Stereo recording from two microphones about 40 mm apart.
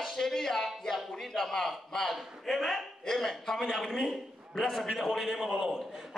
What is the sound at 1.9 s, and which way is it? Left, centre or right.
A man's voice, centre.